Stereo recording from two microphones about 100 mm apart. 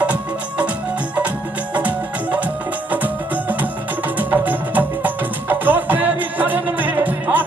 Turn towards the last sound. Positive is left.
turn(degrees=-15)  # may be behind; listen again after turning